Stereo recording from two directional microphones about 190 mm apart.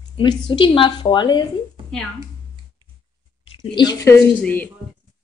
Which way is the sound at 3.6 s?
20° left (ahead or behind).